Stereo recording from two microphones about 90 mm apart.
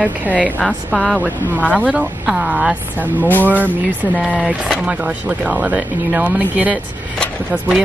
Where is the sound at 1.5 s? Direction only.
15° right (ahead or behind).